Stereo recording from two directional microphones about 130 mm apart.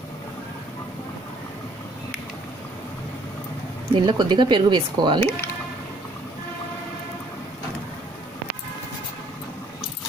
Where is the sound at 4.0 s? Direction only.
35° right (ahead or behind).